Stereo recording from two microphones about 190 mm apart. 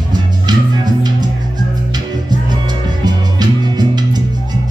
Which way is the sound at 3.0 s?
20° right (ahead or behind).